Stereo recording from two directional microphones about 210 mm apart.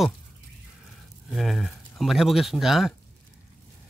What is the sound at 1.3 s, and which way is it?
Speech, centre (ahead or behind).